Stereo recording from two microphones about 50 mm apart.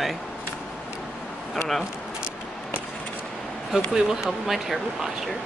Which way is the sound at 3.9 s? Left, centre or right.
Centre.